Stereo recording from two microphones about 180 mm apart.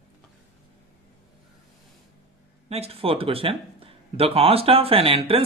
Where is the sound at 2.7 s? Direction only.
35° right (ahead or behind).